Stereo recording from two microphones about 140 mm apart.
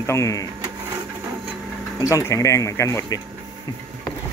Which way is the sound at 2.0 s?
20° left (ahead or behind).